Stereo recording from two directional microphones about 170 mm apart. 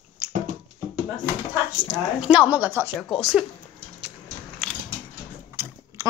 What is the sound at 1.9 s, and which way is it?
Speech, 5° right (ahead or behind).